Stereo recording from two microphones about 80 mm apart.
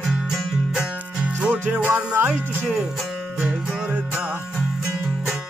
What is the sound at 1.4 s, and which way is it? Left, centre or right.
Music, centre.